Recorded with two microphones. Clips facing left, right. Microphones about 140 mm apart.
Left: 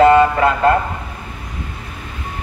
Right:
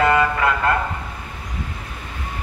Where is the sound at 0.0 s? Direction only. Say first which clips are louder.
Left 7 dB; 30° left (ahead or behind).